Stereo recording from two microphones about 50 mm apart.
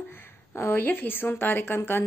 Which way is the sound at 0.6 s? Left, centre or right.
Left.